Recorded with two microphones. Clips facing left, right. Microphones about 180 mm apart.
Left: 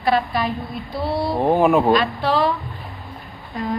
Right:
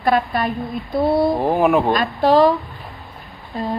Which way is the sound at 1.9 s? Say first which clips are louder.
Right 2 dB; 45° right (ahead or behind).